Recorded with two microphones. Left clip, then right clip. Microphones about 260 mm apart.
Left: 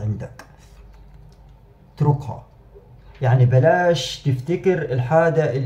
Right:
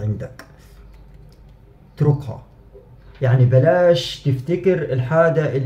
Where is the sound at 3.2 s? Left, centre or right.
Centre.